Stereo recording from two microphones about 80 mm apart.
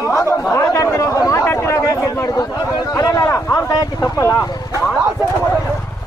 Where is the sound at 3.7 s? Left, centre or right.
Left.